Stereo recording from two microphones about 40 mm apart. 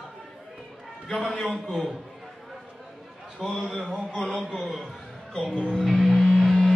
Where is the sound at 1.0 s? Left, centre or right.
Centre.